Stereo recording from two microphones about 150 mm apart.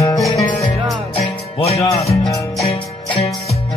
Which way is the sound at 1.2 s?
45° left (ahead or behind).